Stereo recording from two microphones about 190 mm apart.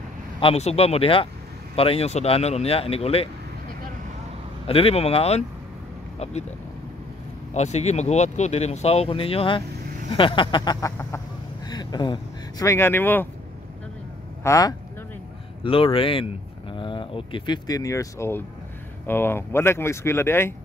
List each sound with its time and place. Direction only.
0.4 s speech: 30° left (ahead or behind)
4.6 s speech: 30° left (ahead or behind)
7.5 s speech: 35° left (ahead or behind)
10.1 s a sound: 25° left (ahead or behind)
11.6 s speech: 20° left (ahead or behind)
14.4 s speech: 20° left (ahead or behind)
15.6 s a sound: 30° left (ahead or behind)
16.7 s speech: 25° left (ahead or behind)